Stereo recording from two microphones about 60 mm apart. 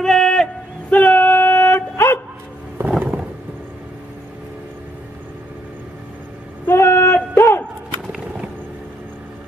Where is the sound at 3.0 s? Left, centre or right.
Right.